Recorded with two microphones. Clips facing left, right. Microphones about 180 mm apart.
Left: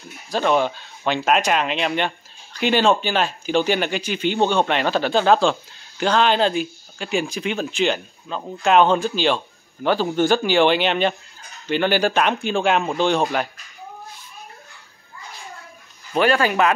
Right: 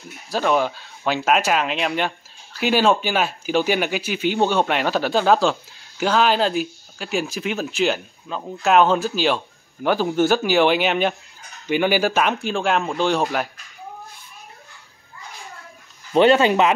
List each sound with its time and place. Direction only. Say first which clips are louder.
0.3 s speech: left 1 dB; 5° right (ahead or behind)
16.1 s speech: right 4 dB; 25° right (ahead or behind)